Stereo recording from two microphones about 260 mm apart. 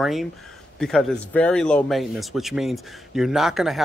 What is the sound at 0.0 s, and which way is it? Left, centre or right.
Speech, centre.